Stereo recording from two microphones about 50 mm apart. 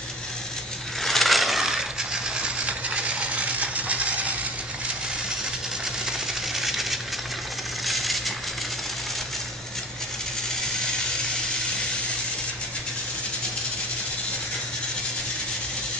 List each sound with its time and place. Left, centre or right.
1.0 s coin: centre
2.3 s coin: right
6.0 s coin: centre
7.8 s a sound: centre